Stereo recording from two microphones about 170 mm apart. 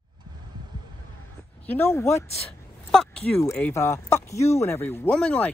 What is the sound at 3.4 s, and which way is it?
Speech, 15° left (ahead or behind).